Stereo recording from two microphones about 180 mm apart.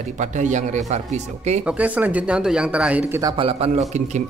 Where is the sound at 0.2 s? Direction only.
40° right (ahead or behind).